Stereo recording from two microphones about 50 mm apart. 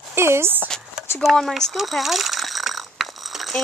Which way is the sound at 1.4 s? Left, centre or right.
Centre.